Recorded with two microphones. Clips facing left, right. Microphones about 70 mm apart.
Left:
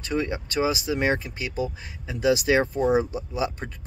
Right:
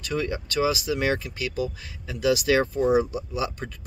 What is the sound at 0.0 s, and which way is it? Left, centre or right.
Speech, left.